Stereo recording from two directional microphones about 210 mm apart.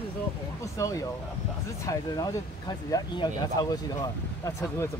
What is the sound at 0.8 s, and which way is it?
Speech, 15° left (ahead or behind).